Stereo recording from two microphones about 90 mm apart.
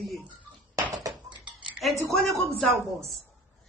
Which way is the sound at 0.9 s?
45° right (ahead or behind).